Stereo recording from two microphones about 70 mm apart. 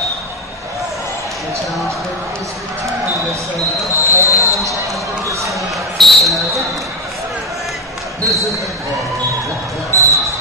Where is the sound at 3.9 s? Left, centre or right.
Left.